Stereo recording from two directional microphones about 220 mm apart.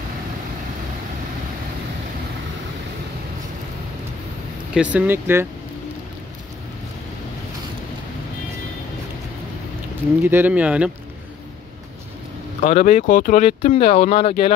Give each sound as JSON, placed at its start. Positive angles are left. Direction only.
{"t": 4.7, "sound": "speech", "side_deg": -5}
{"t": 10.2, "sound": "speech", "side_deg": -10}
{"t": 12.6, "sound": "speech", "side_deg": 30}